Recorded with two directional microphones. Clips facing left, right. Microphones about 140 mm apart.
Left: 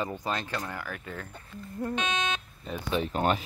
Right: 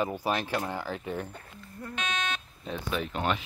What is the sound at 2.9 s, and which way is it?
Speech, 35° left (ahead or behind).